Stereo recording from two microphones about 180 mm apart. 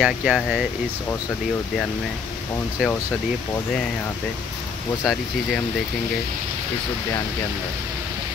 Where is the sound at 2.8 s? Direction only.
5° right (ahead or behind).